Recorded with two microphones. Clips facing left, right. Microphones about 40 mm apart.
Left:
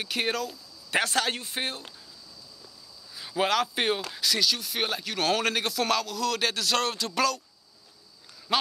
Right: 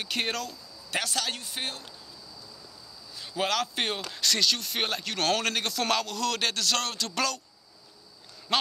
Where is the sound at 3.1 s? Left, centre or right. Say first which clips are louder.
Left 3 dB; centre.